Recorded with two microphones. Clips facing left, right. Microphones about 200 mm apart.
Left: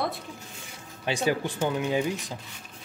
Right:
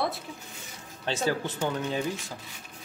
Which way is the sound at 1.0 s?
15° left (ahead or behind).